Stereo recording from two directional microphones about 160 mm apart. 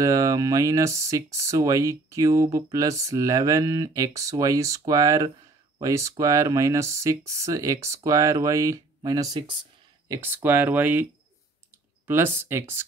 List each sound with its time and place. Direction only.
0.0 s speech: 20° right (ahead or behind)
12.1 s speech: 15° right (ahead or behind)